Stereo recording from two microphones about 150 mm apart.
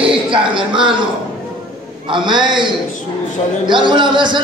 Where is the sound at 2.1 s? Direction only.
30° right (ahead or behind).